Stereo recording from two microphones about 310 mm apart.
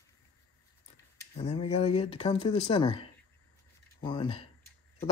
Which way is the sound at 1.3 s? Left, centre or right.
Centre.